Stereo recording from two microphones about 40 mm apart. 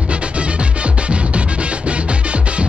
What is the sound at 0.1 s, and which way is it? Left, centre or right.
Music, right.